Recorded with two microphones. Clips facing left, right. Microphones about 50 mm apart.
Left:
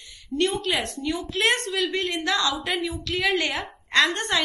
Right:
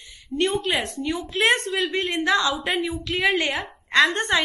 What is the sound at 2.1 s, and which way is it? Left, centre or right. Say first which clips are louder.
Speech: right 7 dB; right.